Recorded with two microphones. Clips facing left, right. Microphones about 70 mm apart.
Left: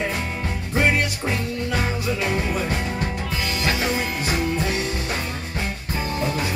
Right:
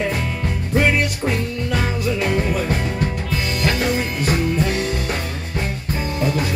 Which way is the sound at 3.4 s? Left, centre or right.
Right.